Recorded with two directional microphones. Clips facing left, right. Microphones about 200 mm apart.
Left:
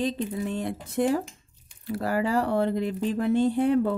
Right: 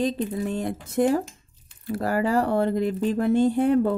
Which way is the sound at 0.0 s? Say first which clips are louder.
Right 3 dB; 45° right (ahead or behind).